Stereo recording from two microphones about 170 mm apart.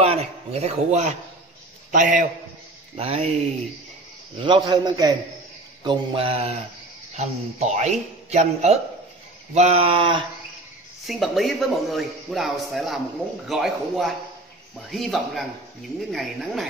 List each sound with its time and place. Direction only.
0.0 s a man's voice: 35° right (ahead or behind)
3.0 s speech: 35° right (ahead or behind)
4.4 s a man's voice: 25° right (ahead or behind)
5.9 s speech: 35° right (ahead or behind)
11.1 s a man's voice: centre (ahead or behind)